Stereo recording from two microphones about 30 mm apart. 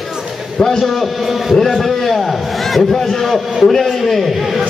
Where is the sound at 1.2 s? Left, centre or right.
Centre.